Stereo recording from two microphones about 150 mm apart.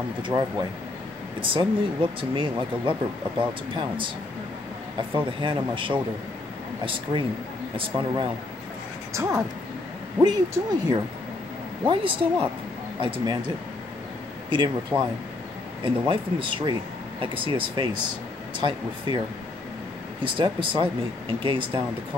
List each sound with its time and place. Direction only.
0.2 s speech: 25° right (ahead or behind)
5.1 s speech: 35° right (ahead or behind)
9.1 s speech: 20° right (ahead or behind)
14.5 s speech: 30° right (ahead or behind)
20.3 s speech: 35° right (ahead or behind)